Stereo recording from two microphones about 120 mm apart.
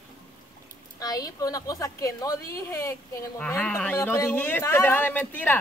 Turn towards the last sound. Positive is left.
turn(degrees=15)  # may be behind; listen again after turning